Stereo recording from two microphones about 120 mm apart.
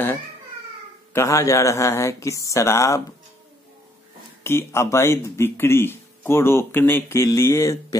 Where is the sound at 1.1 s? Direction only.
25° left (ahead or behind).